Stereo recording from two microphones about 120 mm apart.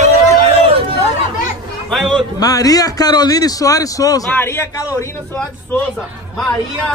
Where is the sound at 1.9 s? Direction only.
Centre (ahead or behind).